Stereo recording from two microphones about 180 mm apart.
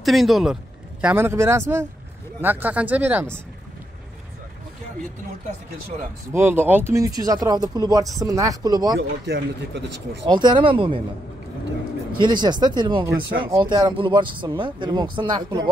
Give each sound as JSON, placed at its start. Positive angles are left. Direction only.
{"t": 0.0, "sound": "speech", "side_deg": 0}
{"t": 1.0, "sound": "speech", "side_deg": -15}
{"t": 6.3, "sound": "speech", "side_deg": -10}
{"t": 9.2, "sound": "speech", "side_deg": -70}
{"t": 10.2, "sound": "speech", "side_deg": -25}
{"t": 12.2, "sound": "speech", "side_deg": -25}